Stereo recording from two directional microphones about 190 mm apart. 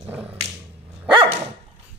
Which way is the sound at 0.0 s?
10° right (ahead or behind).